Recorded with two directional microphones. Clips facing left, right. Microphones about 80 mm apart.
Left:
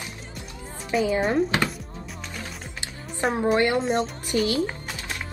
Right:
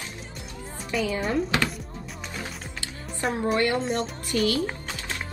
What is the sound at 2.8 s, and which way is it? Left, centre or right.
Music, left.